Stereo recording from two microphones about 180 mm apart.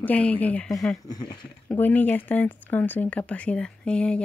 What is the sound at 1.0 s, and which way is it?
Speech, 20° left (ahead or behind).